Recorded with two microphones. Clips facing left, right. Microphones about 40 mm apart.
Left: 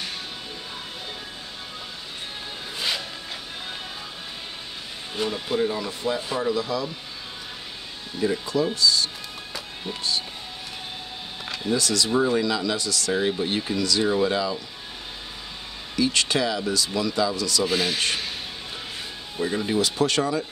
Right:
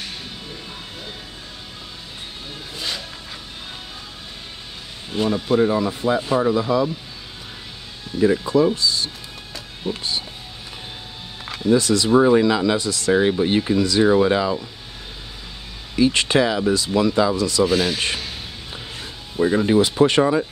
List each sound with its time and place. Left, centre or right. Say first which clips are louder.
5.1 s speech: right 7 dB; centre
5.9 s speech: right 7 dB; right
8.2 s speech: right 7 dB; right
9.9 s speech: right 8 dB; centre
11.5 s speech: right 7 dB; right
12.1 s speech: right 9 dB; right
12.4 s speech: right 7 dB; right
16.0 s speech: right 6 dB; right
17.6 s speech: right 4 dB; centre
19.3 s speech: right 8 dB; right
19.6 s speech: right 6 dB; right